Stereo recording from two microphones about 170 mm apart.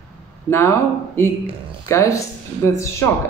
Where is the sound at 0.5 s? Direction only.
15° left (ahead or behind).